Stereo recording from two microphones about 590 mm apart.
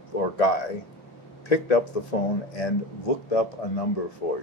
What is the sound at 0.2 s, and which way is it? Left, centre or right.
Speech, left.